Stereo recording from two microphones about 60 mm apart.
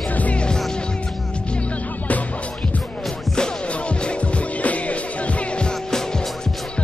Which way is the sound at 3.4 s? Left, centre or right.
Centre.